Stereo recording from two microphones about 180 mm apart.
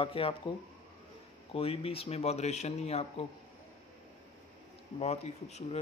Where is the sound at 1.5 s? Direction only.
30° left (ahead or behind).